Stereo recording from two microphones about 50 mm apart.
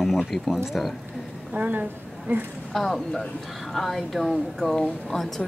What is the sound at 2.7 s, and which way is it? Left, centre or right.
Speech, centre.